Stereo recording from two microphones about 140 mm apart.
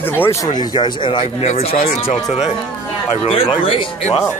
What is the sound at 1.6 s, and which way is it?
Speech, 50° left (ahead or behind).